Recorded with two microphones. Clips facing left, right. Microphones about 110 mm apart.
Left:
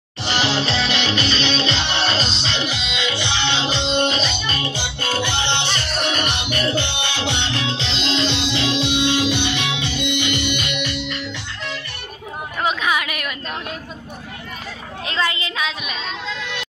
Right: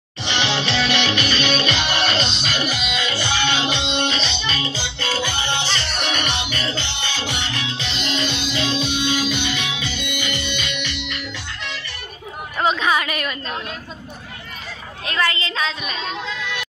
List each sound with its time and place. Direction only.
0.3 s music: 35° left (ahead or behind)
4.5 s music: 55° left (ahead or behind); by 5.7 s 70° left (ahead or behind)
5.8 s music: 40° left (ahead or behind)
6.3 s music: 55° left (ahead or behind)
12.6 s a sound: 5° left (ahead or behind)
15.0 s a woman's voice: 20° left (ahead or behind)